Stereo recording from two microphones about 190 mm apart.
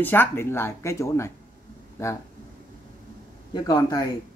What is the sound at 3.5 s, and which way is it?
Speech, 20° left (ahead or behind).